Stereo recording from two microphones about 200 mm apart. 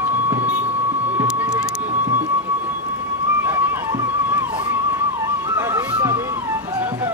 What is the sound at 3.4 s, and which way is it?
Music, 10° right (ahead or behind).